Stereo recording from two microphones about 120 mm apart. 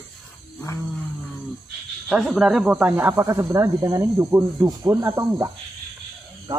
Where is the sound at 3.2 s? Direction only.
25° right (ahead or behind).